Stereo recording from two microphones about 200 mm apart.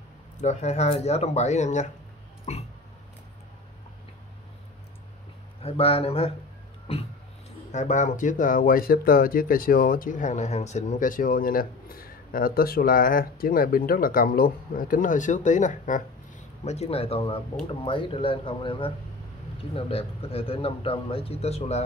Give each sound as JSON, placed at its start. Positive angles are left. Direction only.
{"t": 0.4, "sound": "speech", "side_deg": 35}
{"t": 5.6, "sound": "a man's voice", "side_deg": 30}